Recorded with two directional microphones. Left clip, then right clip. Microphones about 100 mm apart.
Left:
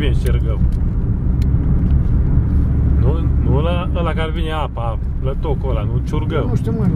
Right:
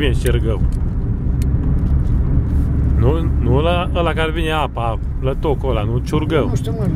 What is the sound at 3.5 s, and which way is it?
Speech, 15° right (ahead or behind).